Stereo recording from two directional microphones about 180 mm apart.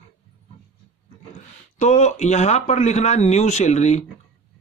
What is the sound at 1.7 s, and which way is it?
Speech, 40° left (ahead or behind).